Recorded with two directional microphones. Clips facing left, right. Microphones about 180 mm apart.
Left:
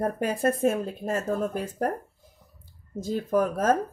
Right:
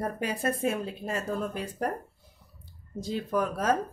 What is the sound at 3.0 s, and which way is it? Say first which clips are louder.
Speech: left 4 dB; 45° left (ahead or behind).